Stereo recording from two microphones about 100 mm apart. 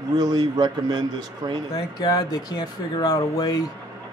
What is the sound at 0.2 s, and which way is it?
A man's voice, 45° right (ahead or behind).